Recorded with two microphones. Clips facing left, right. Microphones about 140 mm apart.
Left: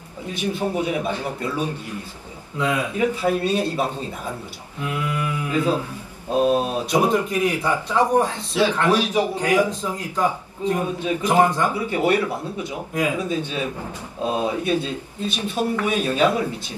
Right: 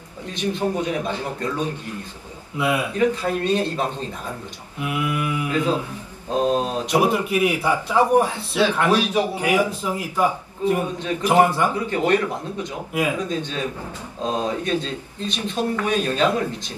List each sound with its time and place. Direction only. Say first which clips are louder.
0.3 s speech: right 1 dB; 10° left (ahead or behind)
2.5 s a man's voice: right 1 dB; 10° right (ahead or behind)
3.0 s speech: left 1 dB; 10° left (ahead or behind)
4.7 s a man's voice: right 2 dB; 15° right (ahead or behind)
6.3 s speech: left 1 dB; 10° left (ahead or behind)
7.0 s a man's voice: right 1 dB; 10° right (ahead or behind)
11.7 s speech: even; 10° left (ahead or behind)
13.2 s speech: left 1 dB; 10° left (ahead or behind)